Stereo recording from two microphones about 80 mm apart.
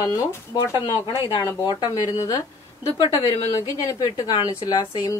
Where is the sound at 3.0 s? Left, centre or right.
Left.